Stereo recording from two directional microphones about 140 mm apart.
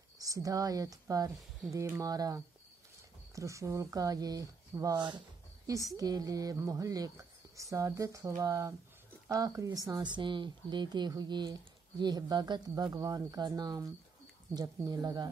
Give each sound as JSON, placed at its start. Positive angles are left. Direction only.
{"t": 0.2, "sound": "speech", "side_deg": -25}